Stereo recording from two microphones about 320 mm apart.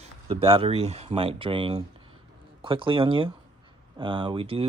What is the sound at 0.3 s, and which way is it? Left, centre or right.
Speech, centre.